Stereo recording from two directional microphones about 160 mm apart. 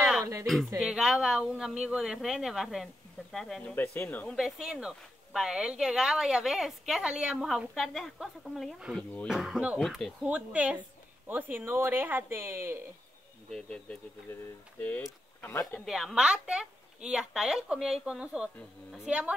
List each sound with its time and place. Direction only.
0.2 s a sound: 20° right (ahead or behind)
0.7 s speech: 5° right (ahead or behind)
3.7 s speech: 10° left (ahead or behind)
4.4 s speech: centre (ahead or behind)
10.2 s speech: 10° right (ahead or behind)
13.5 s speech: 5° left (ahead or behind)
15.7 s speech: centre (ahead or behind)